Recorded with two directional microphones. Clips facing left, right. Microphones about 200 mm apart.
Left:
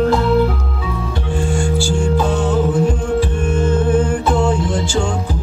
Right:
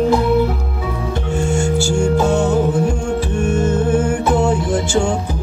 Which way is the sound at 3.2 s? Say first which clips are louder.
Right 1 dB; 45° right (ahead or behind).